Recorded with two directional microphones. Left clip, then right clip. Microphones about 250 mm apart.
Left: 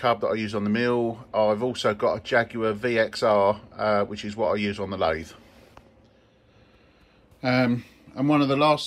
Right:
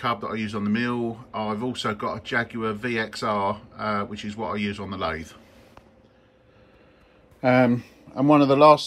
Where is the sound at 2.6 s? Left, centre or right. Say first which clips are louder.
Left 3 dB; left.